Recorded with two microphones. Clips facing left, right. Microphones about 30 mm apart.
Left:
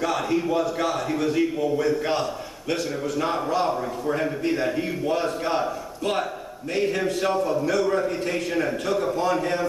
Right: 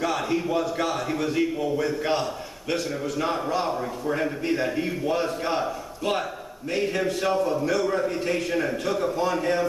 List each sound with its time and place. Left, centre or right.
0.0 s a man's voice: centre